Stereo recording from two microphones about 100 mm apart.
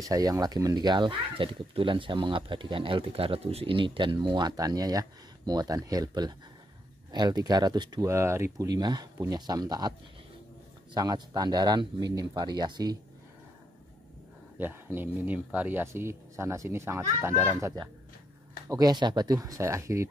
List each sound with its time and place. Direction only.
0.0 s speech: 35° right (ahead or behind)
8.1 s speech: 30° right (ahead or behind)
8.6 s speech: 45° right (ahead or behind)
11.0 s speech: 40° right (ahead or behind)
14.6 s speech: 20° right (ahead or behind)
18.7 s speech: 40° right (ahead or behind)